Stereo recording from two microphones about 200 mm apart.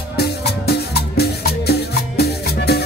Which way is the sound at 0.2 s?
55° left (ahead or behind).